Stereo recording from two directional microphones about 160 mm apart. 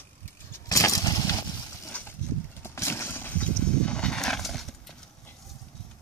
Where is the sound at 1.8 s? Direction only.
10° left (ahead or behind).